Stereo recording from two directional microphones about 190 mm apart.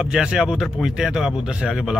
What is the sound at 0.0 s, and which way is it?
Speech, 5° right (ahead or behind).